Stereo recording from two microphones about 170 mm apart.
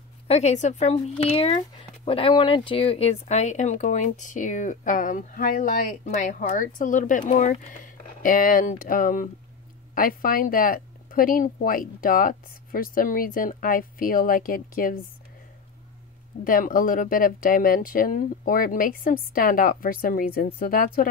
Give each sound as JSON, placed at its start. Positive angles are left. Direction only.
{"t": 0.3, "sound": "a woman's voice", "side_deg": 40}
{"t": 16.4, "sound": "speech", "side_deg": 55}